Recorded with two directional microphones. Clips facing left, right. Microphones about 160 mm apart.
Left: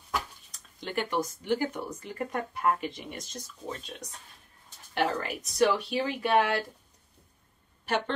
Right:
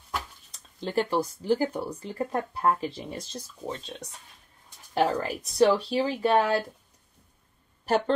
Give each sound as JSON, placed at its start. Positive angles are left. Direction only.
{"t": 0.5, "sound": "speech", "side_deg": -30}
{"t": 4.9, "sound": "speech", "side_deg": -35}
{"t": 7.9, "sound": "speech", "side_deg": -40}